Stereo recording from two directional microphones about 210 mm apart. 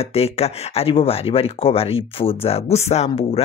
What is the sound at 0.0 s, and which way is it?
Speech, 30° left (ahead or behind).